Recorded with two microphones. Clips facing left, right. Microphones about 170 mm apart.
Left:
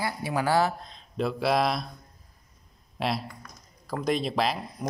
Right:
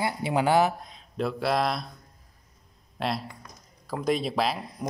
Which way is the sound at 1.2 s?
Centre (ahead or behind).